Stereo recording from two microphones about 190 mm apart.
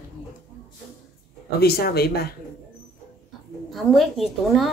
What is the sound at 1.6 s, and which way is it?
Speech, 55° left (ahead or behind).